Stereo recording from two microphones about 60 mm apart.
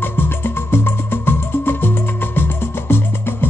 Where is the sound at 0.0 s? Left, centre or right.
Left.